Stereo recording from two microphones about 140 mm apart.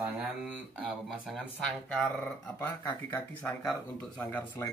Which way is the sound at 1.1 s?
5° right (ahead or behind).